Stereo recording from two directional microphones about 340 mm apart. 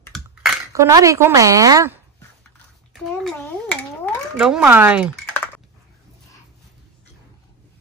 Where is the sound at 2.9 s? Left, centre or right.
Centre.